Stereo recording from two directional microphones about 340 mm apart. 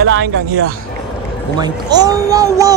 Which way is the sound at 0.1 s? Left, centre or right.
Right.